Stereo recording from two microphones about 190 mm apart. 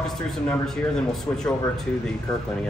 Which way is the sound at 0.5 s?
5° left (ahead or behind).